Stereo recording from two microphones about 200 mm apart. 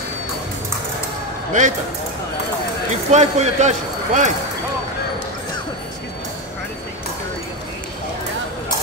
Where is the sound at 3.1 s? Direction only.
35° right (ahead or behind).